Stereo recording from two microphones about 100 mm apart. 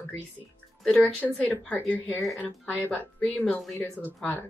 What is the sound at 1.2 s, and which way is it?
Speech, 15° left (ahead or behind).